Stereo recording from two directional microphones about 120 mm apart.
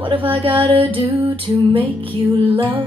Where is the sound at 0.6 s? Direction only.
50° right (ahead or behind).